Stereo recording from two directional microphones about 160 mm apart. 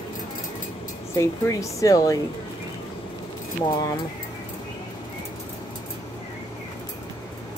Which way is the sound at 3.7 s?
25° left (ahead or behind).